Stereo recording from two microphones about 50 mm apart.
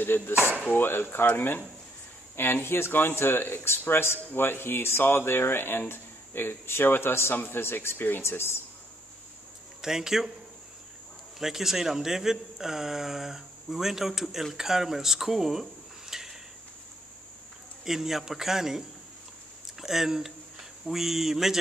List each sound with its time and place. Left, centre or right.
0.0 s speech: left
9.8 s speech: centre
11.3 s speech: centre
17.8 s speech: centre